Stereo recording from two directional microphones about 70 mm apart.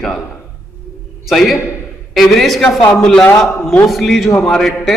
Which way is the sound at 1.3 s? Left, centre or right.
Centre.